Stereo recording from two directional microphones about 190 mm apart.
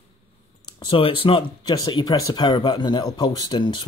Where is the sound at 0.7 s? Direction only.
30° left (ahead or behind).